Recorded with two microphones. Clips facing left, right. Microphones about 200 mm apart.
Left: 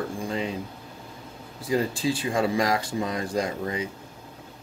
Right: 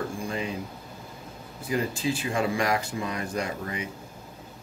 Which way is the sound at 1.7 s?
35° left (ahead or behind).